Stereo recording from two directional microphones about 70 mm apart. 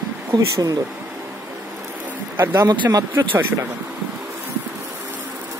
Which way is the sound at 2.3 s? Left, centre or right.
Right.